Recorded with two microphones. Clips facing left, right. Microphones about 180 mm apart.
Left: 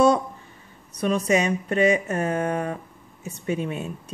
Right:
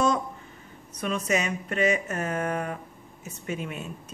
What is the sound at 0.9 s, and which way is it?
A woman's voice, 35° left (ahead or behind).